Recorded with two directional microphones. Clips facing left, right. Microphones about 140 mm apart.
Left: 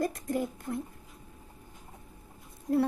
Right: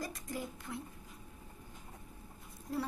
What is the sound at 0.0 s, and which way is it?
Speech, 55° left (ahead or behind).